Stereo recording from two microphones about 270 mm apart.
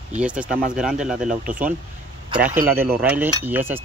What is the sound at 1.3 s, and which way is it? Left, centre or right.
Speech, right.